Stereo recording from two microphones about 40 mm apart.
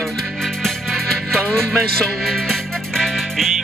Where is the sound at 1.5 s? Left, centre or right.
Centre.